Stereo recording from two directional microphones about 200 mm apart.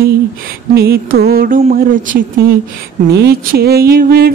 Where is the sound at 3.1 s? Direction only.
55° right (ahead or behind).